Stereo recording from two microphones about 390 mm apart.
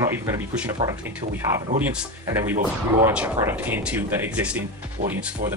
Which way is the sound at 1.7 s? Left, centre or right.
Centre.